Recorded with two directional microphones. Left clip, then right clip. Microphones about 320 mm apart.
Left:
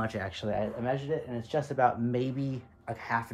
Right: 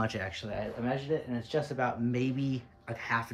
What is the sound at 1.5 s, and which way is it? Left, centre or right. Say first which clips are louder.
Speech: left 1 dB; left.